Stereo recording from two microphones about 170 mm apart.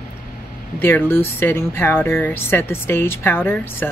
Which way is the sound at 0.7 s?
10° left (ahead or behind).